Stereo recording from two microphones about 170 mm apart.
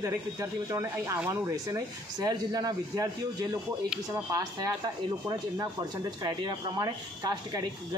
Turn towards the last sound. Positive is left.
turn(degrees=-20)  # may be behind; listen again after turning